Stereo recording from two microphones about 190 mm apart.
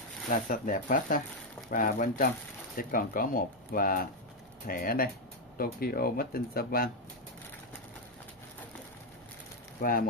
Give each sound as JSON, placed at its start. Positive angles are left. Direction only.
{"t": 0.3, "sound": "speech", "side_deg": 45}
{"t": 9.8, "sound": "speech", "side_deg": 45}